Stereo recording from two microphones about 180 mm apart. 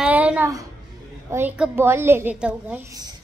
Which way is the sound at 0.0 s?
5° right (ahead or behind).